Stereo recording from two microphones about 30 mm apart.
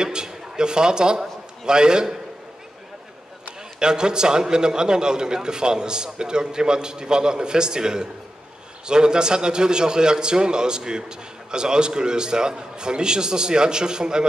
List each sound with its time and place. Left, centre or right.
0.0 s a man's voice: right
3.8 s a man's voice: right